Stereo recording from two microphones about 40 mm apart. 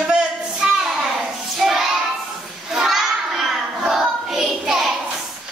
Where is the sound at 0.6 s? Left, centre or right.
Centre.